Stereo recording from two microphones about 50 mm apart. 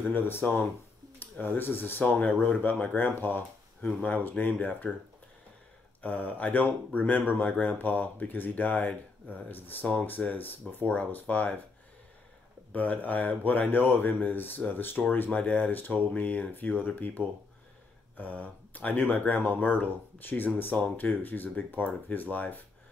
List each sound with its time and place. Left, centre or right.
0.1 s speech: left
2.1 s speech: left
6.0 s speech: left
12.7 s speech: left
20.7 s speech: left